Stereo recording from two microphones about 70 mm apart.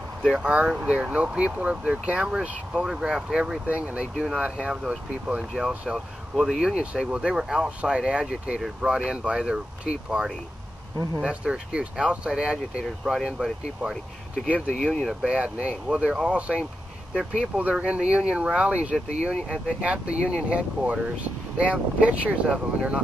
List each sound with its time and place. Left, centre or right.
0.2 s speech: centre
0.5 s speech: centre
4.8 s speech: centre
5.9 s speech: centre
14.8 s speech: centre
15.0 s speech: centre